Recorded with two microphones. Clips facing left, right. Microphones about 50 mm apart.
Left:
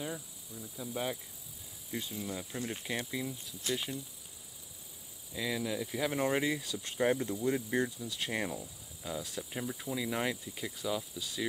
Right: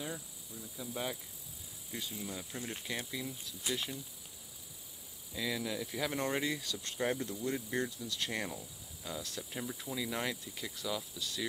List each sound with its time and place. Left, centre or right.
0.0 s cricket: centre
1.9 s speech: centre
5.3 s speech: centre